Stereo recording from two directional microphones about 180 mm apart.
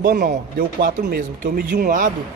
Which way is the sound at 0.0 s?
55° right (ahead or behind).